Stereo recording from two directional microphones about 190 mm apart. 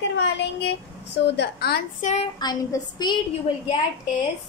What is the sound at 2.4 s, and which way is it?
Speech, 20° left (ahead or behind).